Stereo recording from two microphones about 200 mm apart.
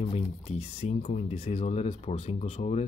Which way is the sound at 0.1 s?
30° left (ahead or behind).